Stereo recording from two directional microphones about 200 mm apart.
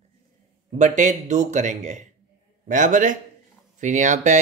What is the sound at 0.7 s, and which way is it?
Speech, 40° right (ahead or behind).